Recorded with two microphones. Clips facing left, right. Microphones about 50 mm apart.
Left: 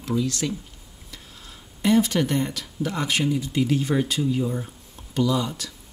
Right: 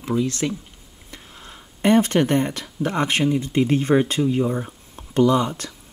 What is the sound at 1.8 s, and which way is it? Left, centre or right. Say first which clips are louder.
Speech: right 3 dB; right.